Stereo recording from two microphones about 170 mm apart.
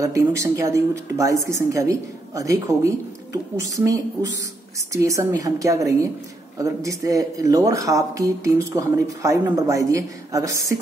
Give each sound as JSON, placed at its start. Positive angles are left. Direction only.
{"t": 0.0, "sound": "speech", "side_deg": -15}